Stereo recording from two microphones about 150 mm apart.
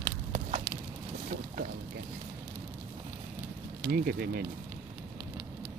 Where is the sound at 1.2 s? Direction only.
60° right (ahead or behind).